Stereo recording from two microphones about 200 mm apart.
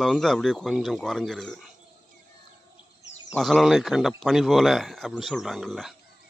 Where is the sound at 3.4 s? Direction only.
Centre (ahead or behind).